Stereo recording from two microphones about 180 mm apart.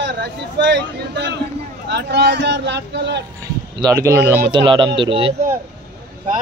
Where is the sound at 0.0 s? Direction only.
70° right (ahead or behind).